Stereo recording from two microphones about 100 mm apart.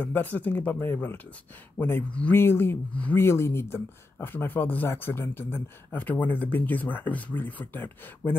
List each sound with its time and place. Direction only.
0.0 s speech: 20° left (ahead or behind)